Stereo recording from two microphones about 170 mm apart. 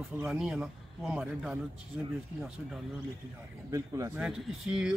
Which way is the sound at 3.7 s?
20° right (ahead or behind).